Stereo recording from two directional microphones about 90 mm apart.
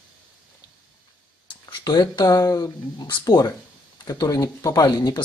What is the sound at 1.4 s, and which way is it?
Speech, 50° left (ahead or behind).